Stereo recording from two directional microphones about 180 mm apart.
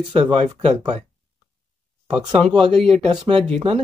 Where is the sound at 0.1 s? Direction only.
35° right (ahead or behind).